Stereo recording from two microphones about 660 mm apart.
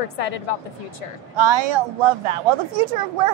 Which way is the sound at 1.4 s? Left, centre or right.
Right.